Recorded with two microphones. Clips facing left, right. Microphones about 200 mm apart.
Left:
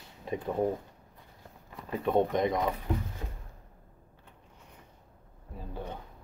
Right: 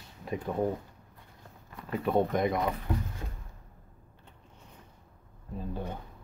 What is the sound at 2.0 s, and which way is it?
Speech, 5° right (ahead or behind).